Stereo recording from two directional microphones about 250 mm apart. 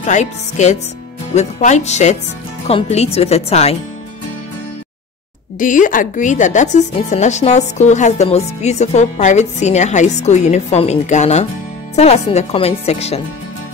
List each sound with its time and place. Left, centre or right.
0.0 s speech: left
5.6 s speech: left